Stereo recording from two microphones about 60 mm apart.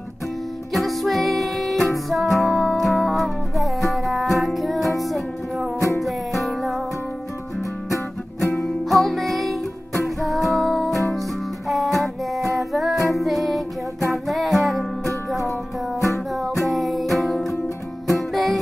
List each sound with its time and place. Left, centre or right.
0.7 s music: centre
7.9 s music: left
8.5 s music: centre